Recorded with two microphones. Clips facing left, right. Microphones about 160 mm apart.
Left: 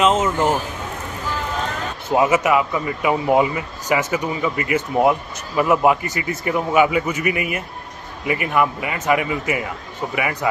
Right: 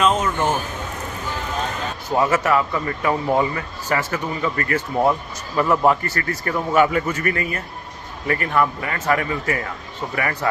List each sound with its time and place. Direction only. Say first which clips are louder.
0.0 s speech: left 2 dB; 20° left (ahead or behind)
2.0 s a man's voice: left 2 dB; 15° left (ahead or behind)